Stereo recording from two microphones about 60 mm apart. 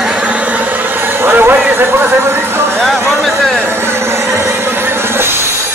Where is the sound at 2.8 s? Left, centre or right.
Centre.